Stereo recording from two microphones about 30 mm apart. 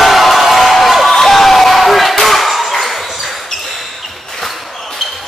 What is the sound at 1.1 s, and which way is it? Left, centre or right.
Crowd, centre.